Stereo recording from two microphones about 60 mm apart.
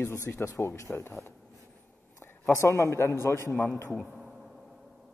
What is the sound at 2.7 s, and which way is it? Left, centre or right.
Speech, left.